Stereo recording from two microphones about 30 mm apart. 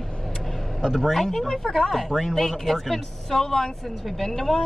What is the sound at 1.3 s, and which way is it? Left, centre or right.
Speech, centre.